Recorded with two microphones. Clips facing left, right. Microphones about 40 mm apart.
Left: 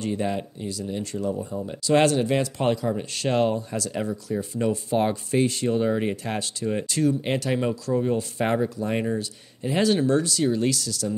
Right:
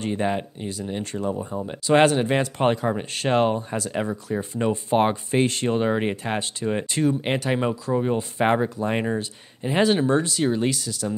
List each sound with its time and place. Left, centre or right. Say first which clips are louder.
0.0 s speech: right 2 dB; right